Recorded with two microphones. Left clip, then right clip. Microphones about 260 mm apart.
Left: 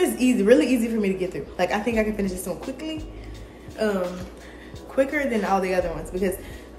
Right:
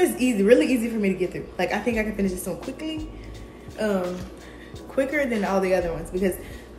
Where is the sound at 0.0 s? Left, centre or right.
Centre.